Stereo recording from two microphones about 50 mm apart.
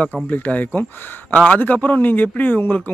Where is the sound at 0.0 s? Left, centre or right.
Left.